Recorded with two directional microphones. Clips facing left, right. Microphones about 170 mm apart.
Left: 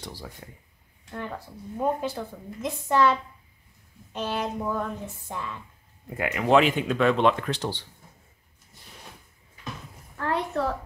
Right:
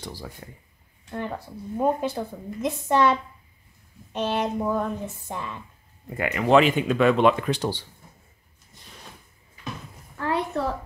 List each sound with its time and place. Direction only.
0.0 s speech: centre (ahead or behind)
1.8 s a woman's voice: 20° right (ahead or behind)
6.0 s speech: centre (ahead or behind)
10.1 s a woman's voice: 10° right (ahead or behind)